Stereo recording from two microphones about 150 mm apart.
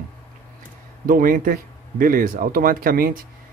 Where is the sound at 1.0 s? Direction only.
65° right (ahead or behind).